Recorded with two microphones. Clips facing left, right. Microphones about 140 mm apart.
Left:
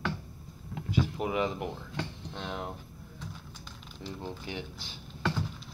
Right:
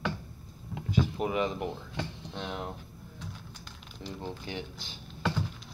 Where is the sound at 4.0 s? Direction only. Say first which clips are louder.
Right 1 dB; 5° left (ahead or behind).